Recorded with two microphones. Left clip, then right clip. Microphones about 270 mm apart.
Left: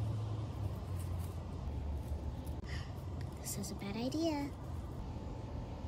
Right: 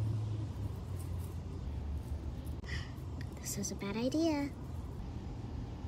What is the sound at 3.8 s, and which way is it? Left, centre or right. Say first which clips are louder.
Speech: right 5 dB; right.